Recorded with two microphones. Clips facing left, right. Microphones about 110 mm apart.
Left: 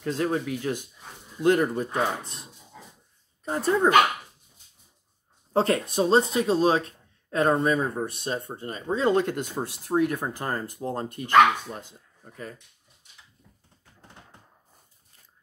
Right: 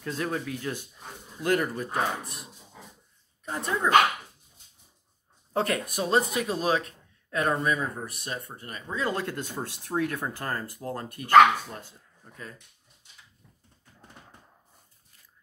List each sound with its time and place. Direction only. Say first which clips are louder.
0.0 s speech: left 5 dB; 25° left (ahead or behind)
3.4 s speech: left 6 dB; 35° left (ahead or behind)
5.5 s speech: left 4 dB; 30° left (ahead or behind)